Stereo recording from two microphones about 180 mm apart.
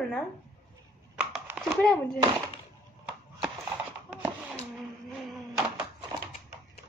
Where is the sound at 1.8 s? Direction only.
5° left (ahead or behind).